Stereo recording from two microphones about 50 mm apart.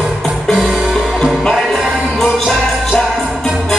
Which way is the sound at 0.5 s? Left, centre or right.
Centre.